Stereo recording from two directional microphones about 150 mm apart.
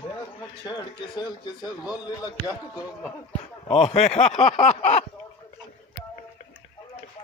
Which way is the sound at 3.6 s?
45° left (ahead or behind).